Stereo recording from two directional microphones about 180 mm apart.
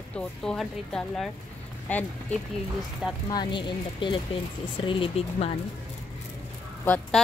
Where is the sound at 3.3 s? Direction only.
25° left (ahead or behind).